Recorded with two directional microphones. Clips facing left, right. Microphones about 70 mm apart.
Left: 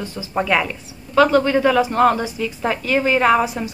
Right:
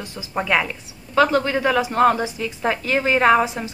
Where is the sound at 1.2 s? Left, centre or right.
Centre.